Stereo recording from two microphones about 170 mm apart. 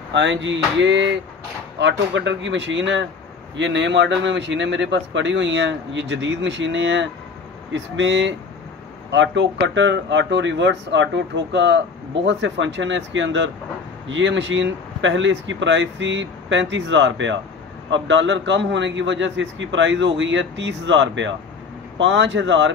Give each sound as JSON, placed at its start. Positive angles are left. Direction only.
{"t": 0.1, "sound": "speech", "side_deg": -90}